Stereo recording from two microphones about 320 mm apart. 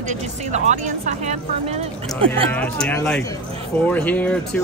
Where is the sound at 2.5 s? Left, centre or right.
Centre.